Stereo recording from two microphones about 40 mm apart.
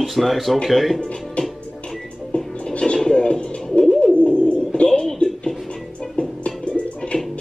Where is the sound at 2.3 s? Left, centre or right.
Left.